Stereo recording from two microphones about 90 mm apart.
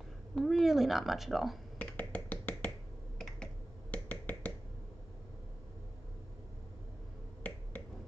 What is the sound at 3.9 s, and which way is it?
Finger snapping, 20° left (ahead or behind).